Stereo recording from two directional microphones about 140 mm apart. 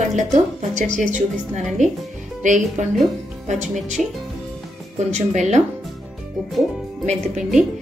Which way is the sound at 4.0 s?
5° right (ahead or behind).